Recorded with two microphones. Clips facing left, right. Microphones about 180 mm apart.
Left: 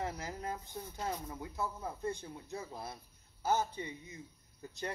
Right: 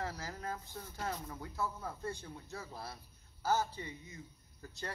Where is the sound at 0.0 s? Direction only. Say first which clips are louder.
Left 2 dB; 20° left (ahead or behind).